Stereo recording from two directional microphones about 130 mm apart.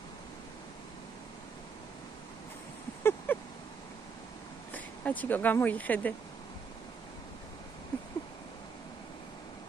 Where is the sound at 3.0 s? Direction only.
20° left (ahead or behind).